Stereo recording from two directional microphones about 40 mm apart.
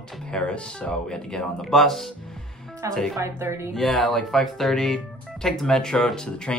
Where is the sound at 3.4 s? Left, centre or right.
Right.